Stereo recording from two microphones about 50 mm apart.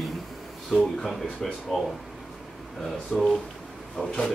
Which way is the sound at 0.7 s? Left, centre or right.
Centre.